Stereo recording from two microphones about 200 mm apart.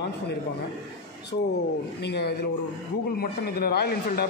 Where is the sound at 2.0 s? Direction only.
55° left (ahead or behind).